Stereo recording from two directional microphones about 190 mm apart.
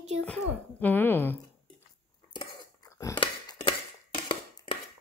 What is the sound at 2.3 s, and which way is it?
Scissors, 20° left (ahead or behind).